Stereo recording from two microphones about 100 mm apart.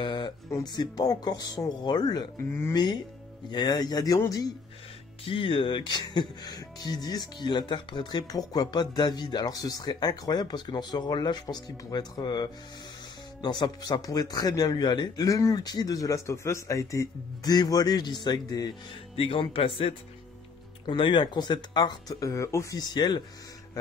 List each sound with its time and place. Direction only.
0.0 s a sound: 50° left (ahead or behind)
0.7 s speech: 40° left (ahead or behind)
5.2 s speech: 60° left (ahead or behind); by 18.7 s 45° left (ahead or behind)
19.1 s speech: 65° left (ahead or behind)
20.8 s speech: 55° left (ahead or behind); by 22.8 s 30° left (ahead or behind)
22.8 s speech: 45° left (ahead or behind)